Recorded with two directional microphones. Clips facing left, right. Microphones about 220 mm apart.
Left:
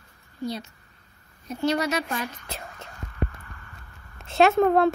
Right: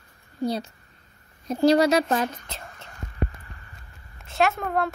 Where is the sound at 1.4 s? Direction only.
35° right (ahead or behind).